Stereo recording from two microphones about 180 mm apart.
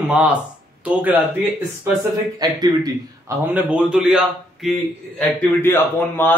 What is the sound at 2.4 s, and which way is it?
Speech, 20° right (ahead or behind).